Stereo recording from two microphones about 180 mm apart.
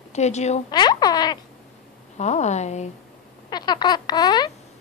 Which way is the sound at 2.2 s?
40° left (ahead or behind).